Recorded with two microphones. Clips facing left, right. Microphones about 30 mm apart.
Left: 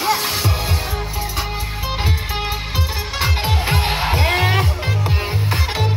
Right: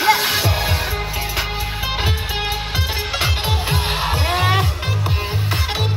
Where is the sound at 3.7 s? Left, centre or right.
Centre.